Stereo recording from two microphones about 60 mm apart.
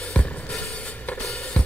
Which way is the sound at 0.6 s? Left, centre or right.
Left.